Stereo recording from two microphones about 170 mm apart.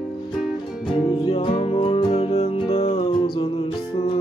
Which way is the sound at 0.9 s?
25° left (ahead or behind).